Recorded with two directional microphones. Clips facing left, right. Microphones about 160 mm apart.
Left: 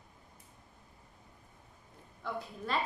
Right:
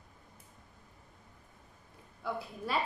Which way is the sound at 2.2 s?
10° right (ahead or behind).